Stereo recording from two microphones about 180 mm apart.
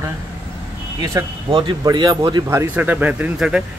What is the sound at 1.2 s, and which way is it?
Speech, 20° right (ahead or behind).